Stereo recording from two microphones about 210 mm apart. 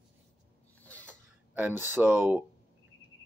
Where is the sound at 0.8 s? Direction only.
5° left (ahead or behind).